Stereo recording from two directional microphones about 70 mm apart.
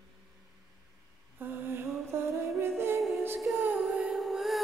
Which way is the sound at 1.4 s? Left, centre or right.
Right.